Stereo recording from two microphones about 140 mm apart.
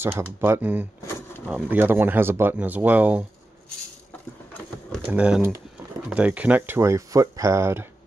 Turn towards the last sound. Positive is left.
turn(degrees=-20)  # may be behind; listen again after turning